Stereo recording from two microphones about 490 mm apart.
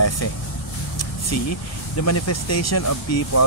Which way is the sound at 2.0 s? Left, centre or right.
Left.